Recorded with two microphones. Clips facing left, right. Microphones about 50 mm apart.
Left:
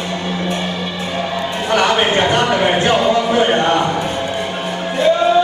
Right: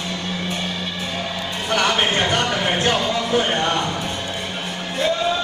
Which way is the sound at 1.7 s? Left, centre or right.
Centre.